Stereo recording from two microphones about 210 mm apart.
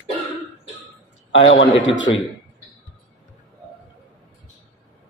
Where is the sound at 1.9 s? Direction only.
65° left (ahead or behind).